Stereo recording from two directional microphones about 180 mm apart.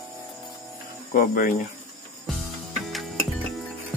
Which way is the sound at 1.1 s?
50° left (ahead or behind).